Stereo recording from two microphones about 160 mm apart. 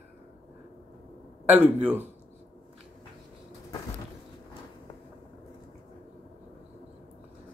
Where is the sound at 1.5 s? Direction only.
5° right (ahead or behind).